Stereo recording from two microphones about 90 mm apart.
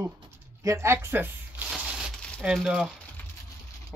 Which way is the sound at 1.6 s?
10° right (ahead or behind).